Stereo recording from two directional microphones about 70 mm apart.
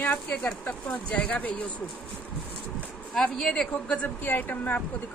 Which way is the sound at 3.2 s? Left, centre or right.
Centre.